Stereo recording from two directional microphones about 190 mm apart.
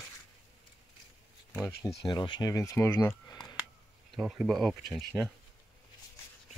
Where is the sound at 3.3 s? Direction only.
20° left (ahead or behind).